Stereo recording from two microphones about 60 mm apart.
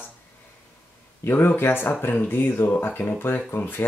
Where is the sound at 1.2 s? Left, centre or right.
Left.